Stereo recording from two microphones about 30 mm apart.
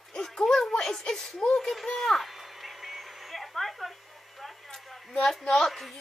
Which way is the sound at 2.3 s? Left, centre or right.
Centre.